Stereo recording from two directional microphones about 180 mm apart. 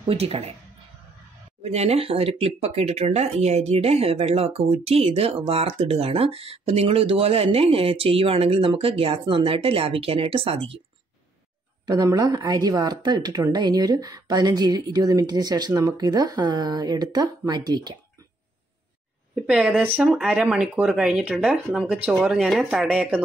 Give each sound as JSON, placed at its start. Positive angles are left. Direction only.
{"t": 0.1, "sound": "speech", "side_deg": -35}
{"t": 1.6, "sound": "speech", "side_deg": -35}
{"t": 11.8, "sound": "speech", "side_deg": -25}
{"t": 19.4, "sound": "speech", "side_deg": -5}